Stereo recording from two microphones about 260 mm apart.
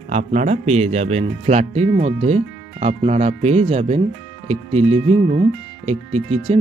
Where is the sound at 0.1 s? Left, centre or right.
Right.